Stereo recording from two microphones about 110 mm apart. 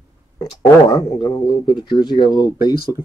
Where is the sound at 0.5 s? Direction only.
45° left (ahead or behind).